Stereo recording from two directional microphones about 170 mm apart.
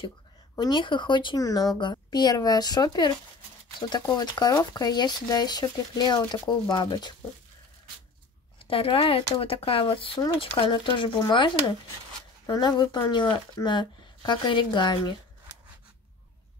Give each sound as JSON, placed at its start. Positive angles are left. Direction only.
{"t": 0.6, "sound": "speech", "side_deg": 25}
{"t": 4.2, "sound": "speech", "side_deg": 20}
{"t": 8.5, "sound": "speech", "side_deg": 30}